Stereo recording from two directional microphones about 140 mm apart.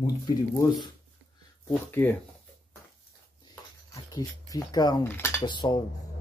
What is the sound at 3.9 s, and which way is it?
Speech, 25° left (ahead or behind).